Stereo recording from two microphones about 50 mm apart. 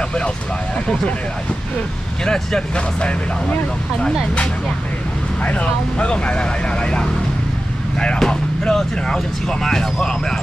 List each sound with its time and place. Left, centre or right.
2.2 s speech: centre
5.4 s speech: left
8.2 s speech: centre